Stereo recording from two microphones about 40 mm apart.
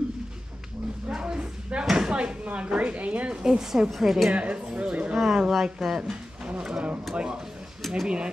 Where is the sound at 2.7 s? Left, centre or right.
Right.